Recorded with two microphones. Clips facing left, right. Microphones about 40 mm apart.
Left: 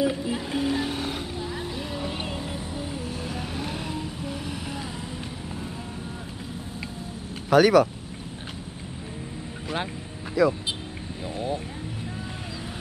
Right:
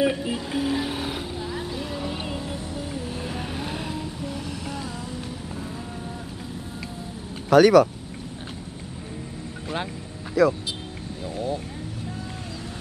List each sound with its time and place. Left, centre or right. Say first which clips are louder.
0.0 s music: right 2 dB; right
0.3 s music: right 1 dB; centre
3.3 s vehicle: right 1 dB; centre
4.2 s boat: right 1 dB; centre
7.4 s speech: right 3 dB; centre
10.4 s speech: right 2 dB; centre
11.3 s vehicle: right 1 dB; left